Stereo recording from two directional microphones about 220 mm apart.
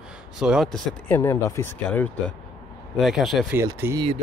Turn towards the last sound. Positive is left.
turn(degrees=-15)  # may be behind; listen again after turning